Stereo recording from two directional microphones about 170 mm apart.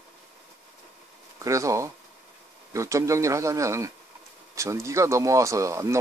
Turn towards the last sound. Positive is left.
turn(degrees=-20)  # may be behind; listen again after turning